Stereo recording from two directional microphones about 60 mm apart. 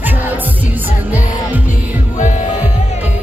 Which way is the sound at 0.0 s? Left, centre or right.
Right.